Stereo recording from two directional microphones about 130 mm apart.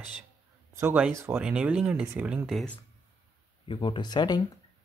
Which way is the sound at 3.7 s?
40° left (ahead or behind).